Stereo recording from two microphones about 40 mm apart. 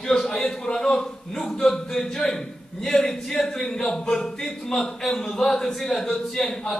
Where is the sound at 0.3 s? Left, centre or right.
Centre.